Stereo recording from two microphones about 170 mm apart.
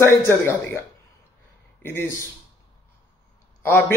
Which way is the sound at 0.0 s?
15° left (ahead or behind).